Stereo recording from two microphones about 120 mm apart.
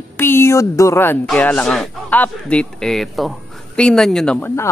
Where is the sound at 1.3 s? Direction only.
10° left (ahead or behind).